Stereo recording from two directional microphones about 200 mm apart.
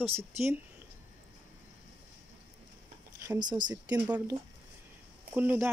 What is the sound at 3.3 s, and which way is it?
Speech, 20° right (ahead or behind).